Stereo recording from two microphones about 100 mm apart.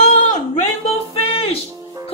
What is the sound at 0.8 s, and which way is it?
Music, 75° left (ahead or behind).